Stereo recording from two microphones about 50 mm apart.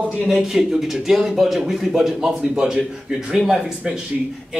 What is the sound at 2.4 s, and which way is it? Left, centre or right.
Speech, centre.